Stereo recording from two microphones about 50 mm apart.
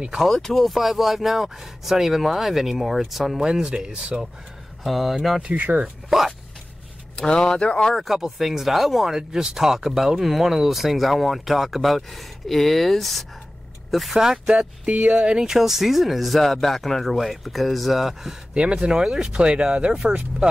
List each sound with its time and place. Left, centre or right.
0.2 s speech: centre
4.8 s speech: centre
5.5 s speech: right
6.0 s speech: centre
7.2 s speech: centre
7.9 s speech: centre
14.2 s speech: centre
14.9 s speech: right
15.4 s speech: centre
18.5 s speech: right